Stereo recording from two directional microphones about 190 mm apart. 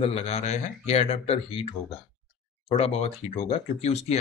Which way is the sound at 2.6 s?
30° left (ahead or behind).